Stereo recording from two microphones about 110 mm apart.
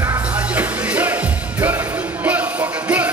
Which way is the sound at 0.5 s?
15° right (ahead or behind).